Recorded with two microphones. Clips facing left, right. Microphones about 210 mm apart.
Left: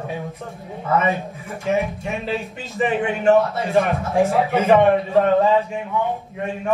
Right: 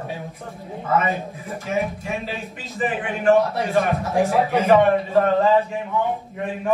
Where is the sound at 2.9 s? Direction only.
30° left (ahead or behind).